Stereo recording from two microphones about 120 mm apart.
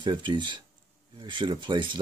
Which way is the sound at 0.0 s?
40° right (ahead or behind).